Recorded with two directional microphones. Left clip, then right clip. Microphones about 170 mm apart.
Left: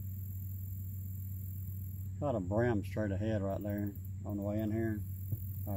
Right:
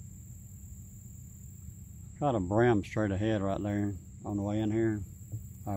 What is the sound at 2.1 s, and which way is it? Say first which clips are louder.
Speech: right 6 dB; 25° right (ahead or behind).